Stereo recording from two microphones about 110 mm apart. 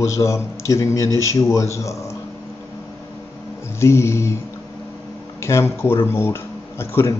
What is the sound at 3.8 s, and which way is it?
Speech, 25° left (ahead or behind).